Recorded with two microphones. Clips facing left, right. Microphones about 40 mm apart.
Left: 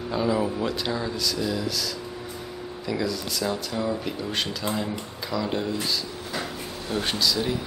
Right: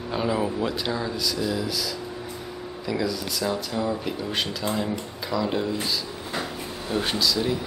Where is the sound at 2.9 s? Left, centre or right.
Centre.